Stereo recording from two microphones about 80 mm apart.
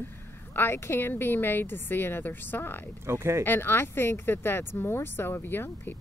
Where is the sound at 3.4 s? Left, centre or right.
Left.